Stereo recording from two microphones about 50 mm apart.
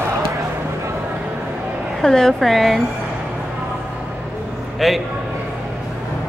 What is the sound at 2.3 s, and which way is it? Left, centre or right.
Speech, centre.